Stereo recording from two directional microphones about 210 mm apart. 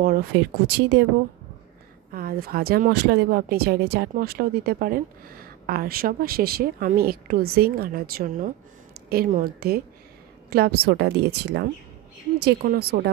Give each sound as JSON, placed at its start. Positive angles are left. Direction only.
{"t": 0.0, "sound": "speech", "side_deg": -45}
{"t": 2.1, "sound": "a woman's voice", "side_deg": -45}